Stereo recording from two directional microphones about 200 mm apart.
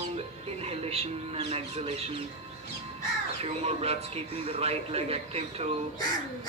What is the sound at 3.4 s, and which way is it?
A man's voice, 30° right (ahead or behind).